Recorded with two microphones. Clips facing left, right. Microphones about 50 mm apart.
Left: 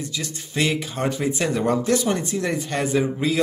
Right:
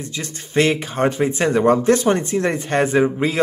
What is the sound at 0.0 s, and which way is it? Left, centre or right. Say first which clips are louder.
A man's voice: right 1 dB; right.